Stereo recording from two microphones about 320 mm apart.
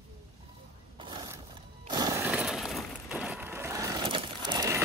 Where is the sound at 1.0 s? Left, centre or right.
Centre.